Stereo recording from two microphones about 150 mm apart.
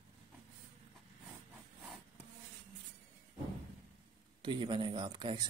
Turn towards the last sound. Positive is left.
turn(degrees=-30)  # may be behind; listen again after turning